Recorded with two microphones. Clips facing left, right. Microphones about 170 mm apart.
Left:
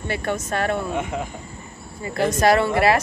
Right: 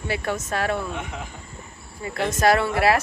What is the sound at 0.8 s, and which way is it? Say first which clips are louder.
Speech: left 6 dB; 45° left (ahead or behind).